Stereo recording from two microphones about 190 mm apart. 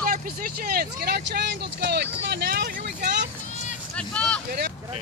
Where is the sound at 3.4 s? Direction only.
40° left (ahead or behind).